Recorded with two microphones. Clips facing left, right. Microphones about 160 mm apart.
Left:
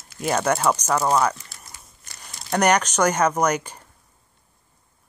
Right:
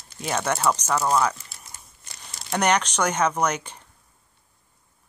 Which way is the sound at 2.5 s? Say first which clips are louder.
Left 3 dB; 10° left (ahead or behind).